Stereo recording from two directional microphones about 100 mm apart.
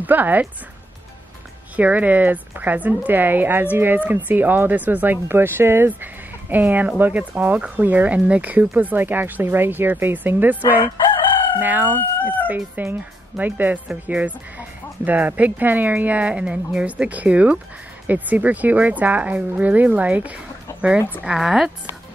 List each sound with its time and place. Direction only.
0.0 s speech: 15° right (ahead or behind)
1.8 s speech: 15° right (ahead or behind)
12.2 s chicken: 15° left (ahead or behind)
12.4 s speech: 20° right (ahead or behind); by 21.7 s 5° right (ahead or behind)